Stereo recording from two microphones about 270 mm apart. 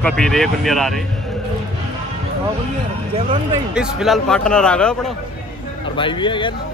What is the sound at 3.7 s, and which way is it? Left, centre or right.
Speech, centre.